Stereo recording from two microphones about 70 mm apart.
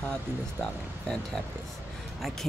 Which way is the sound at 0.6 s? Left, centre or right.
Centre.